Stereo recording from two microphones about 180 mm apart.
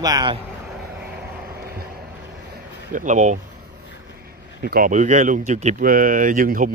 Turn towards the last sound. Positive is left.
turn(degrees=-50)  # may be behind; listen again after turning